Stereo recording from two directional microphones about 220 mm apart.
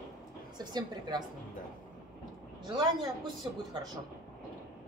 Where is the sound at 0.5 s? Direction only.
20° right (ahead or behind).